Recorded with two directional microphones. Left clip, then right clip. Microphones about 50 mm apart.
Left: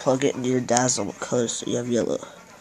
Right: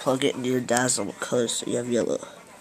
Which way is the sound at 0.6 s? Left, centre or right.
Left.